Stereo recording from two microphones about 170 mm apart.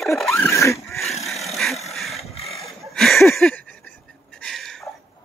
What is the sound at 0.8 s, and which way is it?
Speech, centre (ahead or behind).